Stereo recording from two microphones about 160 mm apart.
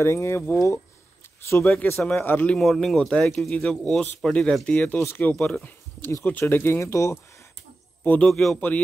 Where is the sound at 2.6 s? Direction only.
Centre (ahead or behind); by 7.1 s 15° left (ahead or behind).